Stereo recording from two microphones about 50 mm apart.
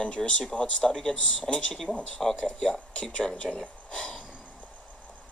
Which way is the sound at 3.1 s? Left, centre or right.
Left.